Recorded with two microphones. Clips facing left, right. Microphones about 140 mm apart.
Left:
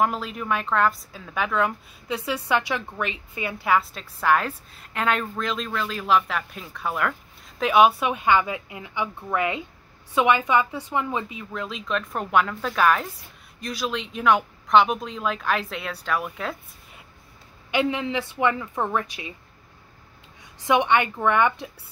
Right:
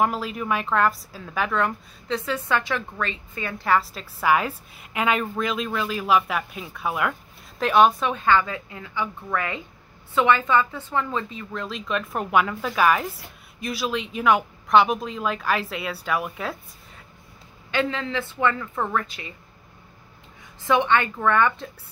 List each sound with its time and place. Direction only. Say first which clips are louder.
0.0 s a woman's voice: right 1 dB; centre (ahead or behind)
17.6 s a woman's voice: left 2 dB; 15° left (ahead or behind)
20.6 s a woman's voice: even; 15° left (ahead or behind)